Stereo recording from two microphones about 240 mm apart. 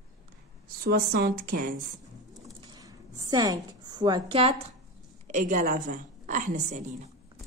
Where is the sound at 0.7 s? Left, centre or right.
Right.